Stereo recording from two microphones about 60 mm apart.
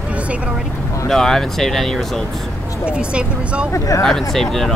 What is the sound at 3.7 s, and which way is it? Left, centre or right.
Speech, left.